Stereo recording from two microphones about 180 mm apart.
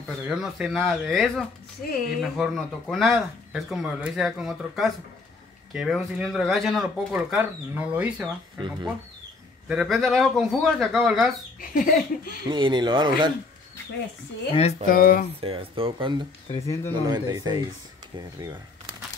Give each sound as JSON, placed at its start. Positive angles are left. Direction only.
{"t": 0.3, "sound": "speech", "side_deg": -5}
{"t": 1.9, "sound": "speech", "side_deg": 55}
{"t": 2.1, "sound": "speech", "side_deg": 0}
{"t": 9.7, "sound": "speech", "side_deg": 0}
{"t": 11.7, "sound": "speech", "side_deg": 50}
{"t": 12.4, "sound": "speech", "side_deg": -25}
{"t": 14.5, "sound": "speech", "side_deg": 35}
{"t": 14.9, "sound": "speech", "side_deg": 50}
{"t": 15.4, "sound": "speech", "side_deg": -30}
{"t": 16.6, "sound": "speech", "side_deg": 15}
{"t": 17.0, "sound": "speech", "side_deg": -20}